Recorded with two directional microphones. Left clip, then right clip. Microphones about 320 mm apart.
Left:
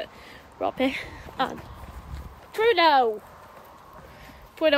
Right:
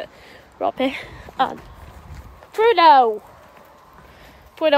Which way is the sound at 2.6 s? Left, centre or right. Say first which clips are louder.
Right 7 dB; right.